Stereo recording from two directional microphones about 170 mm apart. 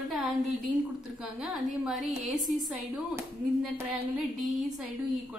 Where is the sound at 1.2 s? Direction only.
Centre (ahead or behind).